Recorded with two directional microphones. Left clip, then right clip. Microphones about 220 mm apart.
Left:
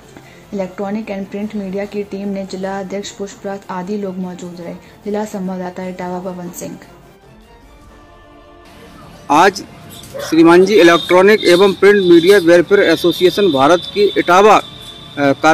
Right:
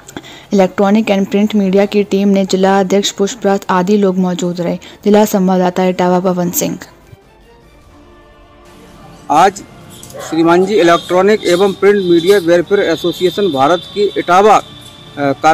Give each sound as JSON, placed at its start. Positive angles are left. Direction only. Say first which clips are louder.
{"t": 0.5, "sound": "a woman's voice", "louder": "right 11 dB", "side_deg": -45}
{"t": 9.3, "sound": "speech", "louder": "right 1 dB", "side_deg": 0}